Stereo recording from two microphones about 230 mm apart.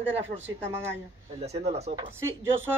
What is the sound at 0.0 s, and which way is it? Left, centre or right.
Speech, right.